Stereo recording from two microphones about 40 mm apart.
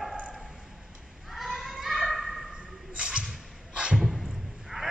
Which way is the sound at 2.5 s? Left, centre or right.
Right.